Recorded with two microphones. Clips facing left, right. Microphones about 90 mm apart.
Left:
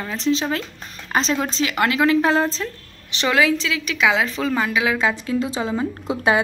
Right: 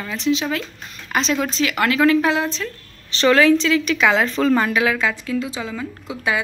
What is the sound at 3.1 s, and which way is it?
A woman's voice, 10° left (ahead or behind).